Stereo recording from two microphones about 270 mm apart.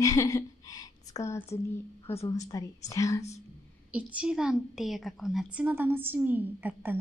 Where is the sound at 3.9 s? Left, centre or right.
Centre.